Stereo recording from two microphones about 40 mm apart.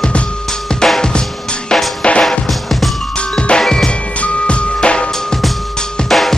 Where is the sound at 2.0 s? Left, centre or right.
Left.